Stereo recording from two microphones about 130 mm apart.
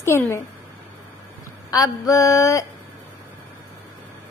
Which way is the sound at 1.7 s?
25° left (ahead or behind).